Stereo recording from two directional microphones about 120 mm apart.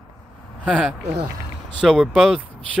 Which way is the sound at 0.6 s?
10° right (ahead or behind).